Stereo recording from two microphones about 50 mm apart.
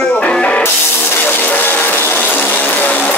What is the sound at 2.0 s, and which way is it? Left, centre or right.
Music, left.